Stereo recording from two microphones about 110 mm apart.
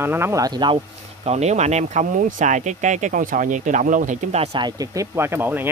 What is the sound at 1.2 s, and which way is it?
Speech, 90° right.